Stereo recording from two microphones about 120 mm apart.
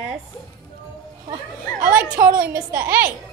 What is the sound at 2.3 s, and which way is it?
Child singing, 10° right (ahead or behind).